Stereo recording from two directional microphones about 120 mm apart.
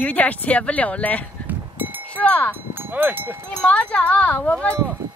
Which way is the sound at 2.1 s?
10° left (ahead or behind).